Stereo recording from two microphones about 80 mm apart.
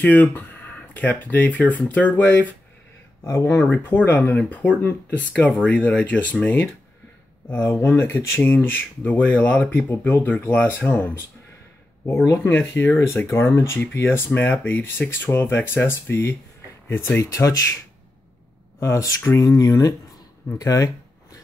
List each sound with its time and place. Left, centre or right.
0.0 s speech: left
3.3 s speech: left
3.7 s speech: left
12.3 s speech: left
17.3 s speech: left
18.8 s speech: left
20.5 s a sound: left